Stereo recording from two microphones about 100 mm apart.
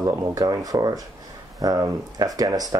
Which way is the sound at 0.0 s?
30° right (ahead or behind).